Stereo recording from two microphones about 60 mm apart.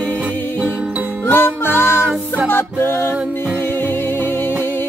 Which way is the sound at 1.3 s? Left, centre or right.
Left.